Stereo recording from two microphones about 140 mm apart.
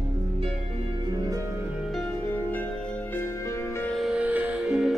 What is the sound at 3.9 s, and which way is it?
Music, 5° right (ahead or behind).